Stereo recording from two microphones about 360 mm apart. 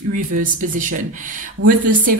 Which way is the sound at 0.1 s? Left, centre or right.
Right.